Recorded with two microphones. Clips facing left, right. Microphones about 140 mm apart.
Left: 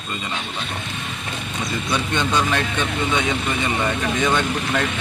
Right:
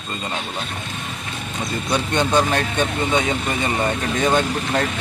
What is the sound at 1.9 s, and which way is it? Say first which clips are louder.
Speech: right 3 dB; 40° right (ahead or behind).